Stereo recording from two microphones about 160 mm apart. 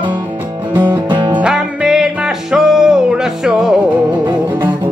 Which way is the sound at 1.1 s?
30° right (ahead or behind).